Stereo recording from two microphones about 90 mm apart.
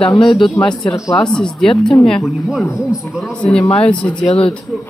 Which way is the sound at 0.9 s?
35° left (ahead or behind).